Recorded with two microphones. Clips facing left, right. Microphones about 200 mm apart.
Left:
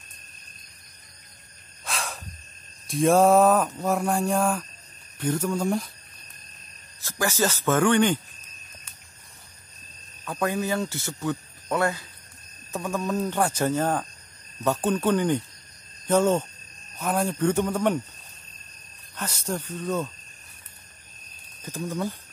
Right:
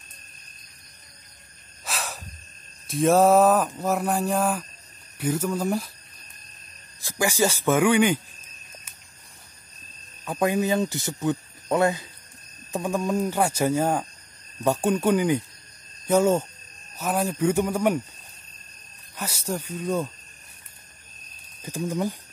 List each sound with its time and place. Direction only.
1.9 s a sound: 5° right (ahead or behind)
2.9 s speech: centre (ahead or behind)
7.0 s speech: 15° right (ahead or behind)
10.2 s speech: 15° right (ahead or behind)
19.1 s speech: 10° right (ahead or behind)
21.6 s speech: 15° right (ahead or behind)